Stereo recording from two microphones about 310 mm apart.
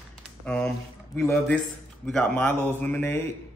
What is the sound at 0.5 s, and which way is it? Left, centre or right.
A man's voice, centre.